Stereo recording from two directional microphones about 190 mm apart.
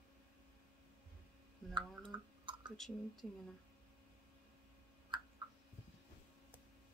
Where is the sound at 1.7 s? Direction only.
25° right (ahead or behind).